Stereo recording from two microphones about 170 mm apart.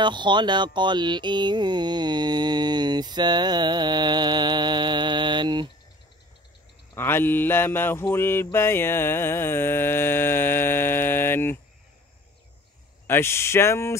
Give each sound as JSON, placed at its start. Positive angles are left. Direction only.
{"t": 0.0, "sound": "mantra", "side_deg": -25}
{"t": 7.0, "sound": "mantra", "side_deg": 15}
{"t": 13.0, "sound": "mantra", "side_deg": 15}